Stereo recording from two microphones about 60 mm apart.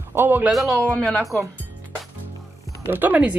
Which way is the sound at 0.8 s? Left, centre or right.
Left.